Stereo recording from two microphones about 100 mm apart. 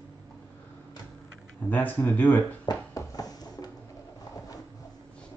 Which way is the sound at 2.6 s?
40° left (ahead or behind).